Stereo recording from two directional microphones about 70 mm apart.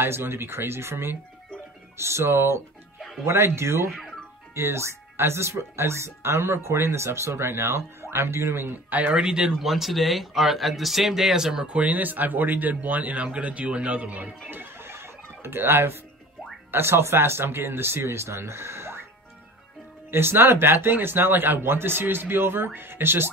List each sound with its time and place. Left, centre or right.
0.0 s speech: right
9.1 s speech: centre
14.5 s a sound: right
16.7 s speech: right
20.1 s speech: right